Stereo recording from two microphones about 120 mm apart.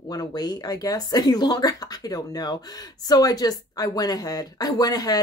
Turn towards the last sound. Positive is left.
turn(degrees=35)  # may be behind; listen again after turning